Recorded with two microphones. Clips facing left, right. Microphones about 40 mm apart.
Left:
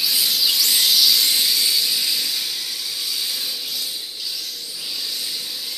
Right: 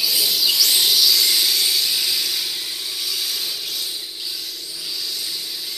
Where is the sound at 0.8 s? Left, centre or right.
Centre.